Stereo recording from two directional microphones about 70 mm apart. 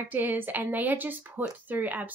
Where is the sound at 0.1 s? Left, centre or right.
Right.